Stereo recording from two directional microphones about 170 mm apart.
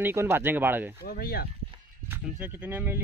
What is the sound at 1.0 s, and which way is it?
Speech, 65° left (ahead or behind).